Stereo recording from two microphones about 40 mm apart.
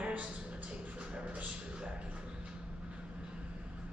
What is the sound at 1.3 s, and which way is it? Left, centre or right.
Music, right.